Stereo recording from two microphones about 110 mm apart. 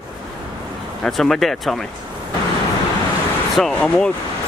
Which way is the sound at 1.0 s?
5° left (ahead or behind).